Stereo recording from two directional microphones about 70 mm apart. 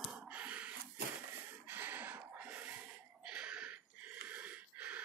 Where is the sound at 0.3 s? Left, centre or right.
Centre.